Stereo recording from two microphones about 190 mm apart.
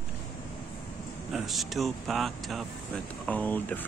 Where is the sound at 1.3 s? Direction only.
Centre (ahead or behind).